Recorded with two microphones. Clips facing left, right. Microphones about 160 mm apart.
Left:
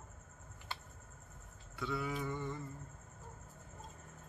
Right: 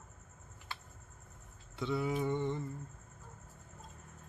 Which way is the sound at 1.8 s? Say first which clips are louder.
Right 5 dB; 25° right (ahead or behind).